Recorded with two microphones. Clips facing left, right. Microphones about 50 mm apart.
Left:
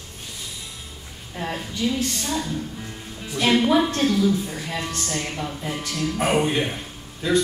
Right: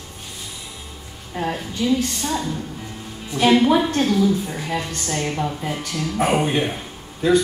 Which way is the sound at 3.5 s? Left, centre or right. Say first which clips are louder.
Right 2 dB; centre.